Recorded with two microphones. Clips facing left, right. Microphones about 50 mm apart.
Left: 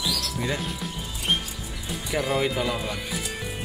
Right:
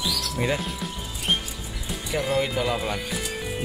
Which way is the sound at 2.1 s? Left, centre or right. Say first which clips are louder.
Even; centre.